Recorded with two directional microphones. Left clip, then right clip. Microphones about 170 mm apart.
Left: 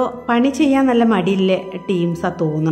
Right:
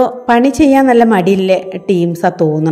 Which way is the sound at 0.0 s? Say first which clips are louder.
Right 7 dB; 20° right (ahead or behind).